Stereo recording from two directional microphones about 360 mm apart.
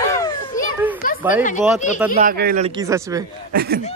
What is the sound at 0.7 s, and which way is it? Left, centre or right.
Children playing, centre.